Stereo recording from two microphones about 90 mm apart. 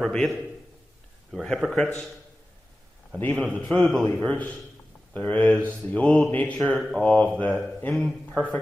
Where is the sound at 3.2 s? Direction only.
20° left (ahead or behind).